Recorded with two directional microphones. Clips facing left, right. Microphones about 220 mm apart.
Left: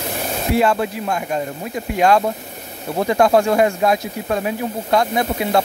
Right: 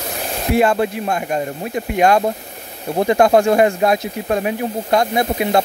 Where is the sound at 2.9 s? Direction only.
25° right (ahead or behind).